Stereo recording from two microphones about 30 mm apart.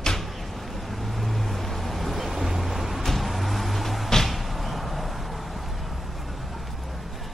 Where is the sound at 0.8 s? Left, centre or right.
Centre.